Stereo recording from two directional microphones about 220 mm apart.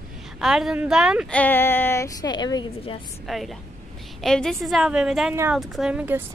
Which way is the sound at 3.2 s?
Centre (ahead or behind).